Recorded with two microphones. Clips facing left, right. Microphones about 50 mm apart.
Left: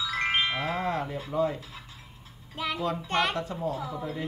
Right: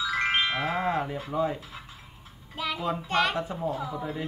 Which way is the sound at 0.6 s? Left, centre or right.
Centre.